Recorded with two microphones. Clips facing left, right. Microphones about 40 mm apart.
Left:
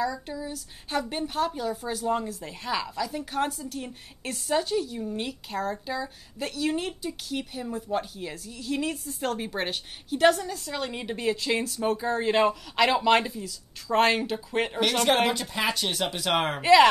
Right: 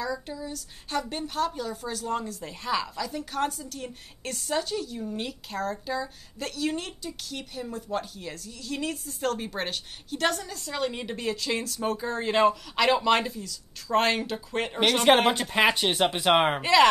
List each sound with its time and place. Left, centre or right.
0.0 s speech: centre
15.3 s speech: right
16.6 s speech: centre